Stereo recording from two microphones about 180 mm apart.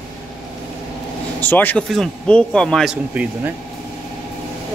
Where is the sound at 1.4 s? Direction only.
10° left (ahead or behind); by 3.5 s 5° right (ahead or behind).